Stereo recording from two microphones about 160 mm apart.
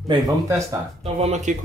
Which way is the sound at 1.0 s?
40° right (ahead or behind).